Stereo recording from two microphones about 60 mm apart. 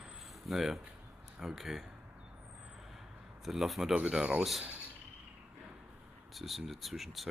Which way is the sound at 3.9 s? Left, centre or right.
Centre.